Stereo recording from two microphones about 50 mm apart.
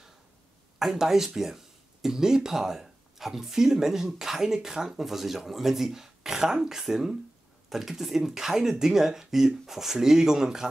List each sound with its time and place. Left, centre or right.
0.7 s speech: centre